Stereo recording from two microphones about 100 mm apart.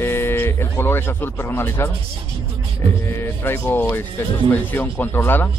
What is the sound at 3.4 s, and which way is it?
Speech, 20° left (ahead or behind).